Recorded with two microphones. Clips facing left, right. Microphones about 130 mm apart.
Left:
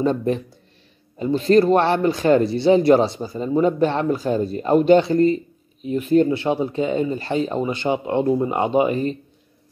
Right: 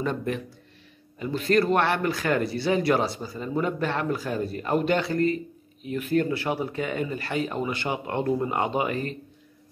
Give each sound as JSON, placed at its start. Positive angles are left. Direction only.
{"t": 0.0, "sound": "speech", "side_deg": 30}